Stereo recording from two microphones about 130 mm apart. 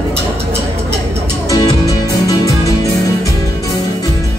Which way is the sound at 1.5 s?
25° left (ahead or behind).